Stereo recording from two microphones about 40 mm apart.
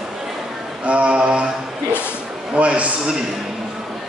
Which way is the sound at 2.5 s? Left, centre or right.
Right.